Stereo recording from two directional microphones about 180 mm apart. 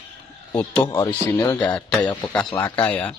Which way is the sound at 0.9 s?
25° left (ahead or behind).